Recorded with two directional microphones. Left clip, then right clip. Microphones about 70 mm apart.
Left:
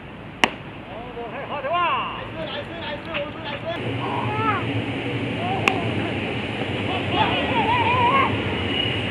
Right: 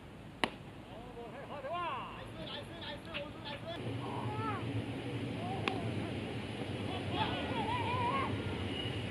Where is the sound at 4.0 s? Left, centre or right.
Left.